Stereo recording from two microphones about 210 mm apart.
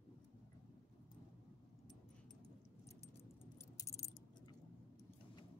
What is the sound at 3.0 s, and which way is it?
Keys jangling, 15° left (ahead or behind).